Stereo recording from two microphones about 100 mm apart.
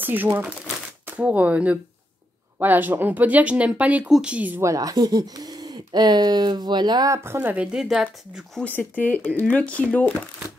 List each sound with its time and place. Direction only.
0.0 s speech: 20° right (ahead or behind)
4.6 s speech: 35° right (ahead or behind)
7.1 s speech: 25° right (ahead or behind)
7.5 s speech: 10° right (ahead or behind)
8.6 s speech: 15° left (ahead or behind)